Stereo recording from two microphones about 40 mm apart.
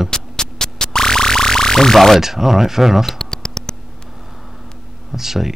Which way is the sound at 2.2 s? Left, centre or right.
Centre.